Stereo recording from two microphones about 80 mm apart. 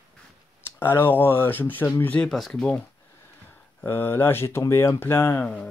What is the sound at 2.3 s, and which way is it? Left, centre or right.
Speech, centre.